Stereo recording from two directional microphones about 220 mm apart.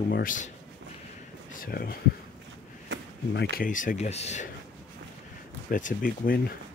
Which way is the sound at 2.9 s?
60° right (ahead or behind).